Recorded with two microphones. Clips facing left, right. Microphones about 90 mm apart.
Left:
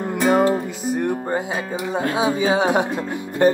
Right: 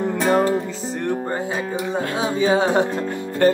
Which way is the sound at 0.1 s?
10° left (ahead or behind).